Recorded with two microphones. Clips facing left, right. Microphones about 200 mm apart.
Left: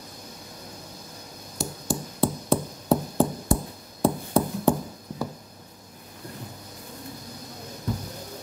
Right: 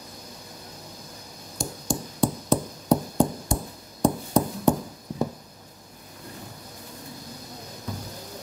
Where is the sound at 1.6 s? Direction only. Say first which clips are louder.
Even; 5° left (ahead or behind).